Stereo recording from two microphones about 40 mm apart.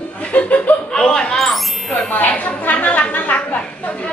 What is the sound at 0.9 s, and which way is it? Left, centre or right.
Speech, left.